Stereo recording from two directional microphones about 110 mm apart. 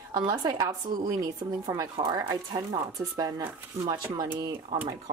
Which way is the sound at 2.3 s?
35° right (ahead or behind).